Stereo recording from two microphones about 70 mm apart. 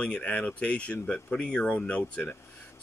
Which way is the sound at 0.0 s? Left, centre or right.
Centre.